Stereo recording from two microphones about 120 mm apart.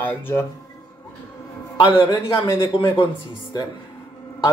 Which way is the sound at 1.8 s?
45° left (ahead or behind).